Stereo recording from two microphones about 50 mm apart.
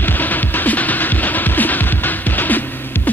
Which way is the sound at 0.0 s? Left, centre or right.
Left.